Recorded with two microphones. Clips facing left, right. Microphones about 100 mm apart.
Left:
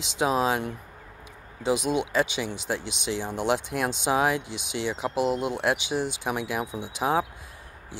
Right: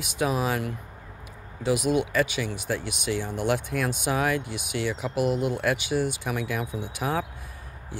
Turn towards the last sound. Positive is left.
turn(degrees=20)  # may be behind; listen again after turning